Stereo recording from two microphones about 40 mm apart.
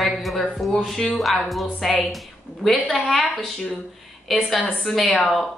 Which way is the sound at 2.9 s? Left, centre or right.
Left.